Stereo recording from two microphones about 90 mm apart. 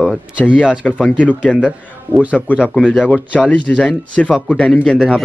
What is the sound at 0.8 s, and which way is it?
Speech, 10° left (ahead or behind).